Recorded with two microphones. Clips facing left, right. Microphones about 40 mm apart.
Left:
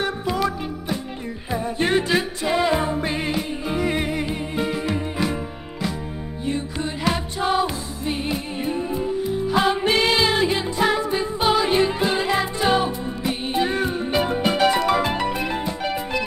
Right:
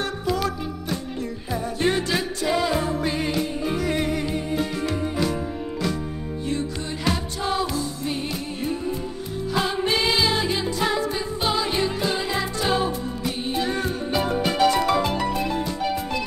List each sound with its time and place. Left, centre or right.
0.0 s music: centre
9.5 s music: left